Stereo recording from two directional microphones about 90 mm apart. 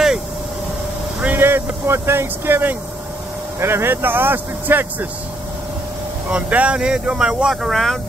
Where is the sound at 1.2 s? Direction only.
25° right (ahead or behind).